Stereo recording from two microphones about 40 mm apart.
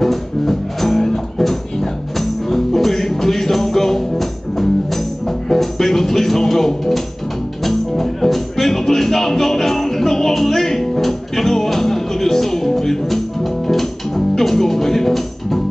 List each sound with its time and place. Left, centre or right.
0.0 s music: centre